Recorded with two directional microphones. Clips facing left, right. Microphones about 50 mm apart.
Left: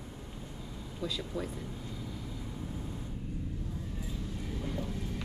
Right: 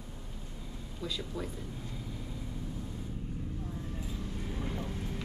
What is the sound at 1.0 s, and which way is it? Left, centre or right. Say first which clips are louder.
Speech: left 2 dB; centre.